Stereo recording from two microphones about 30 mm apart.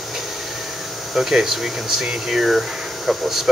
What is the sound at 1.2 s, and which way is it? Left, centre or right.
Speech, centre.